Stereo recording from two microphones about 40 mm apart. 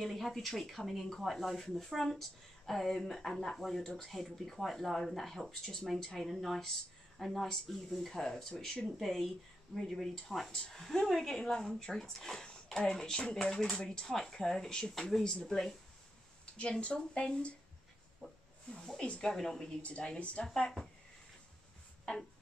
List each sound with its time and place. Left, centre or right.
0.0 s speech: centre
6.1 s speech: centre
16.8 s speech: left
18.7 s speech: centre
20.2 s a woman's voice: left
20.4 s speech: centre